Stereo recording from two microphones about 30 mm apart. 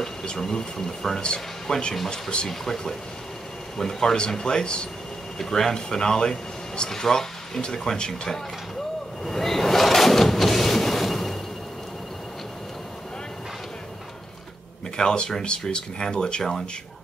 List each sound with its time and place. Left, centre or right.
0.4 s speech: left
2.4 s speech: centre
5.4 s speech: centre
9.2 s a sound: centre
15.0 s speech: left